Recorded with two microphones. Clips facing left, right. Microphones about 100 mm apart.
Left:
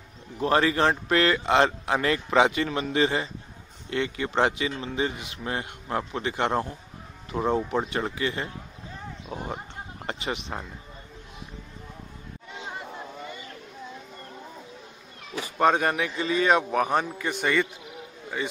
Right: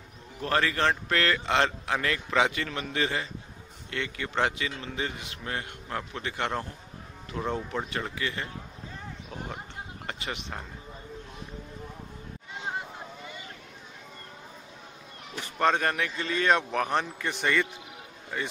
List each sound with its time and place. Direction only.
0.4 s speech: 20° left (ahead or behind)
10.0 s speech: 20° left (ahead or behind)
15.6 s a man's voice: 10° left (ahead or behind)